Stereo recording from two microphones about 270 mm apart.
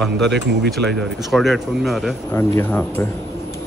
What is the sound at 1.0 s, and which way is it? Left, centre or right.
Speech, centre.